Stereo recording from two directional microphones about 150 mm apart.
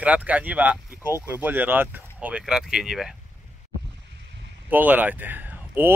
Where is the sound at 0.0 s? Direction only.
10° right (ahead or behind).